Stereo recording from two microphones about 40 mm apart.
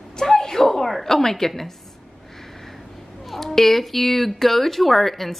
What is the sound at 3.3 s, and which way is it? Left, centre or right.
Speech, centre.